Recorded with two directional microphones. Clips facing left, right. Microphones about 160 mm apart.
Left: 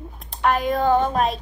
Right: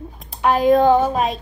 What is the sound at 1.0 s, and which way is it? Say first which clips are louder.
Speech: right 2 dB; 5° right (ahead or behind).